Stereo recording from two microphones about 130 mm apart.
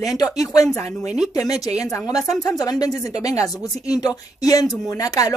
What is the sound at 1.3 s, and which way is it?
Speech, 30° left (ahead or behind).